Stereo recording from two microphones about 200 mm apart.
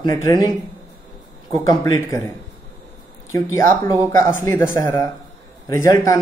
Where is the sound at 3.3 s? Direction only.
15° left (ahead or behind).